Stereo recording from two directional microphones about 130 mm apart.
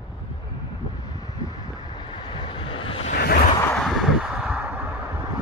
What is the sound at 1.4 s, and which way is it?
Vehicle, 25° left (ahead or behind).